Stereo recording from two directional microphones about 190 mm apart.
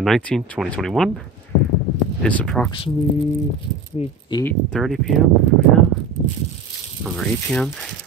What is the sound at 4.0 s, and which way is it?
Speech, 35° left (ahead or behind).